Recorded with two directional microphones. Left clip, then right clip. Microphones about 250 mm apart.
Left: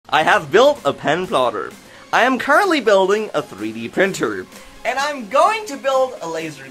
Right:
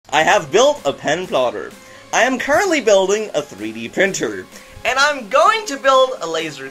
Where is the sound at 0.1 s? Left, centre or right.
Centre.